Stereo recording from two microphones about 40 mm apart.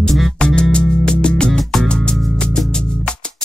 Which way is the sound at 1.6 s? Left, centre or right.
Centre.